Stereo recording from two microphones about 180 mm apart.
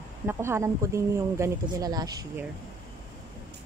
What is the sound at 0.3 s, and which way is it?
Speech, 15° right (ahead or behind).